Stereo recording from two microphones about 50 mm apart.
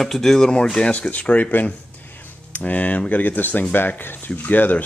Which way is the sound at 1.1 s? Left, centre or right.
Left.